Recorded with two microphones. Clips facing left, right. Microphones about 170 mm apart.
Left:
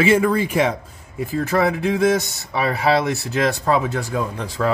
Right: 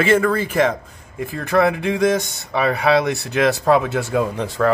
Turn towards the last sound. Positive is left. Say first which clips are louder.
# right 3 dB
turn(degrees=5)  # may be behind; listen again after turning